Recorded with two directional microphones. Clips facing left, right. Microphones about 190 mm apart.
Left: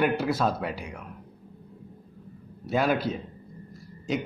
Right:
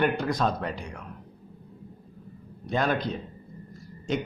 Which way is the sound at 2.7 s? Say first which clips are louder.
Left 2 dB; 5° left (ahead or behind).